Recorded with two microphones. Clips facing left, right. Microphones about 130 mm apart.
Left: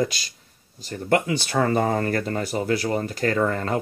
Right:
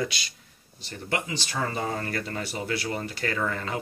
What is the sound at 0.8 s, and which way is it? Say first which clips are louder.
Speech: left 9 dB; 55° left (ahead or behind).